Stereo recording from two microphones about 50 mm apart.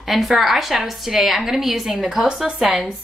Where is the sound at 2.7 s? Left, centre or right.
Centre.